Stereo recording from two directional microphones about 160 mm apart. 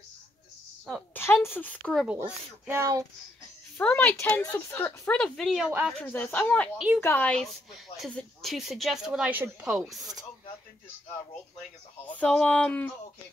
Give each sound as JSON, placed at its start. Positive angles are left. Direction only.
{"t": 1.1, "sound": "a woman's voice", "side_deg": 15}
{"t": 2.0, "sound": "speech", "side_deg": -10}
{"t": 3.7, "sound": "a woman's voice", "side_deg": 10}
{"t": 5.7, "sound": "speech", "side_deg": -10}
{"t": 5.9, "sound": "a woman's voice", "side_deg": 10}
{"t": 12.1, "sound": "a woman's voice", "side_deg": 5}